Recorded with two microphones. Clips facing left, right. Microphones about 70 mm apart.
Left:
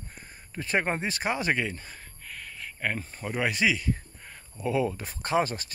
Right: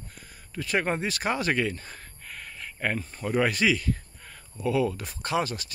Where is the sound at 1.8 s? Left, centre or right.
Centre.